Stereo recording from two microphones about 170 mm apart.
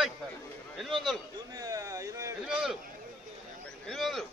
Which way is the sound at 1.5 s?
20° right (ahead or behind).